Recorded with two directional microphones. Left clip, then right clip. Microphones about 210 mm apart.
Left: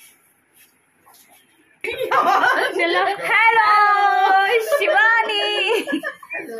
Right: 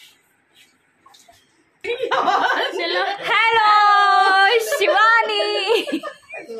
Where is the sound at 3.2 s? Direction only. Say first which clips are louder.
Even; 10° right (ahead or behind).